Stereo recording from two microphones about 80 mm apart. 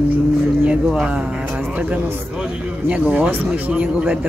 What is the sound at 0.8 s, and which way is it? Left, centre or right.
Speech, centre.